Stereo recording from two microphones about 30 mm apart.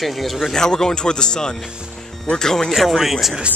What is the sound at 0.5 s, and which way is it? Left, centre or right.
Speech, left.